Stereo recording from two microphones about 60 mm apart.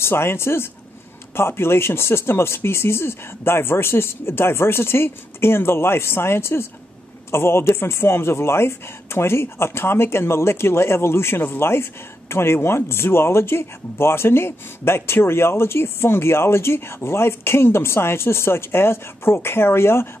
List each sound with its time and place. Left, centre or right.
0.0 s speech: left